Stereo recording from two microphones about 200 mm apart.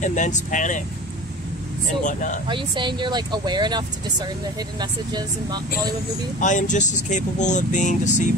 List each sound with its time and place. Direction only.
0.0 s speech: 40° left (ahead or behind)
2.4 s speech: 25° right (ahead or behind)
6.4 s speech: 40° left (ahead or behind)